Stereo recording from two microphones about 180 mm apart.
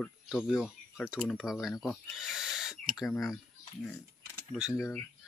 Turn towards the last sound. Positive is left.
turn(degrees=10)  # may be behind; listen again after turning